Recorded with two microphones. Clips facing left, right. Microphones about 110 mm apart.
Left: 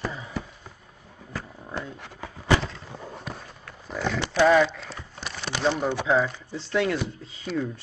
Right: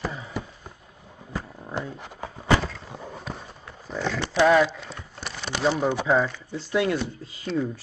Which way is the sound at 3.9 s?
5° left (ahead or behind).